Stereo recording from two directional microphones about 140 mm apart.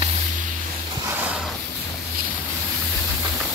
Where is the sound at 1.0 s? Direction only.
15° right (ahead or behind).